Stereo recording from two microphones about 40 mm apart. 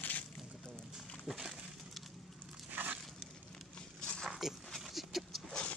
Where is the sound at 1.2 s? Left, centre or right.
Centre.